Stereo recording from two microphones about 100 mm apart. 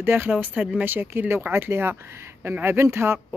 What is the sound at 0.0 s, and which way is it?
Speech, 20° right (ahead or behind).